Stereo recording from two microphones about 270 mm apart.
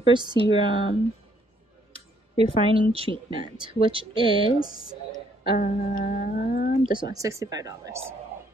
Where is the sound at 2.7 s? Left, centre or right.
Right.